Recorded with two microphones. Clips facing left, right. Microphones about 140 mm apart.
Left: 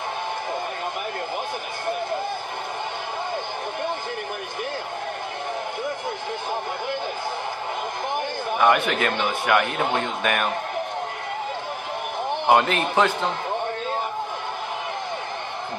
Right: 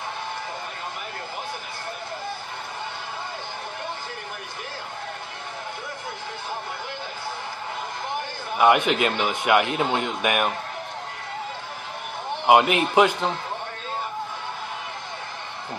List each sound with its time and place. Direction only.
8.5 s a man's voice: 15° right (ahead or behind)
12.4 s speech: 15° right (ahead or behind)